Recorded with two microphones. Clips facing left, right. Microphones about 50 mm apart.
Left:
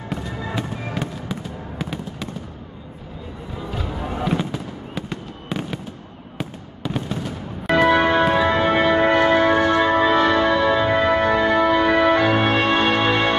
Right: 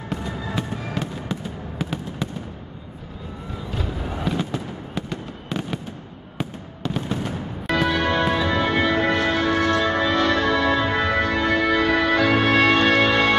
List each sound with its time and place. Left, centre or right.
0.1 s fireworks: centre
0.9 s fireworks: centre
3.7 s music: centre
4.4 s fireworks: centre
7.7 s music: left
12.4 s music: centre